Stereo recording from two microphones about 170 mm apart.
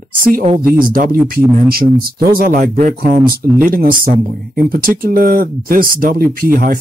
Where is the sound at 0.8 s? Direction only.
55° right (ahead or behind).